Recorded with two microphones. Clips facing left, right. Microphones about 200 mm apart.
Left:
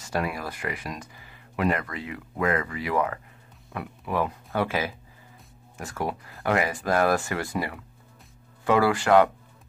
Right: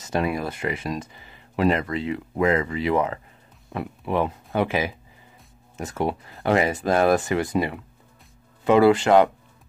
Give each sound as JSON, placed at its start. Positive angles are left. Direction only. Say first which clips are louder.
{"t": 0.0, "sound": "speech", "louder": "right 5 dB", "side_deg": -20}